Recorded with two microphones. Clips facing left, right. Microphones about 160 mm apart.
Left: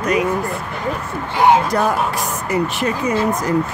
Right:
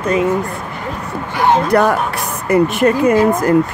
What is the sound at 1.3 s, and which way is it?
Speech, 15° left (ahead or behind).